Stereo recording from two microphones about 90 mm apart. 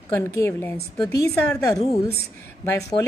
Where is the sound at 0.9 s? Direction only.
40° left (ahead or behind).